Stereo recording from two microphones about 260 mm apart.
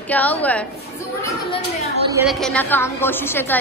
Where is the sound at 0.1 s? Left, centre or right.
Centre.